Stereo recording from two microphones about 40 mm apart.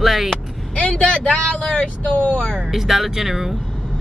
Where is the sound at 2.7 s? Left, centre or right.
Centre.